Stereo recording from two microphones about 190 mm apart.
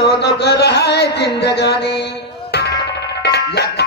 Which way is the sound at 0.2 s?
60° left (ahead or behind).